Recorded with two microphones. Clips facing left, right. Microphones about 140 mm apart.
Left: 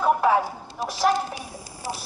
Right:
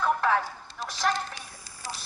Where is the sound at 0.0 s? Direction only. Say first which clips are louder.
Left 5 dB; 10° left (ahead or behind).